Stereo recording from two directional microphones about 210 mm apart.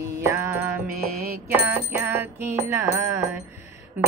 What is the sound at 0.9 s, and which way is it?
Mantra, 45° right (ahead or behind).